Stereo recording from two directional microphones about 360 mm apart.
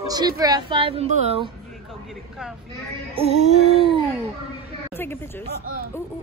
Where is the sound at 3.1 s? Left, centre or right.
Centre.